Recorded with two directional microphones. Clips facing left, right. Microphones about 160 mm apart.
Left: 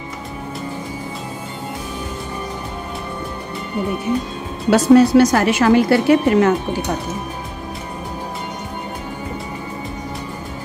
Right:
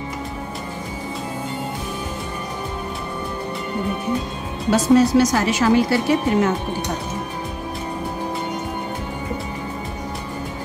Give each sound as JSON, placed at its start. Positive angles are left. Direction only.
{"t": 4.6, "sound": "a woman's voice", "side_deg": 65}